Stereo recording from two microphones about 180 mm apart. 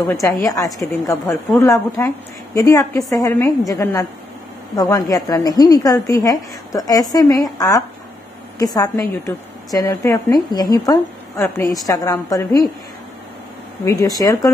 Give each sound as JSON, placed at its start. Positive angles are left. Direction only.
{"t": 0.1, "sound": "a woman's voice", "side_deg": 15}
{"t": 13.8, "sound": "a woman's voice", "side_deg": 20}